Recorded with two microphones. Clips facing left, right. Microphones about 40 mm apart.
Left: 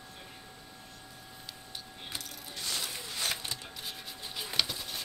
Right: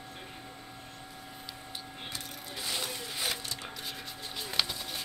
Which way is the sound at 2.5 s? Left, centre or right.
Centre.